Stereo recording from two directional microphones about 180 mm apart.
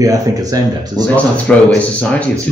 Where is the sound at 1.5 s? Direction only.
5° left (ahead or behind).